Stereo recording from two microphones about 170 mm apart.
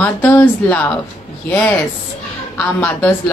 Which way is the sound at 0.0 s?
10° left (ahead or behind).